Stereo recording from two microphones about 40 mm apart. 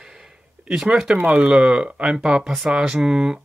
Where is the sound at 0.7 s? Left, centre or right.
Centre.